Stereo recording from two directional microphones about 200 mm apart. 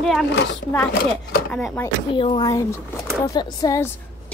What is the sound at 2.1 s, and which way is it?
A woman's voice, 25° left (ahead or behind).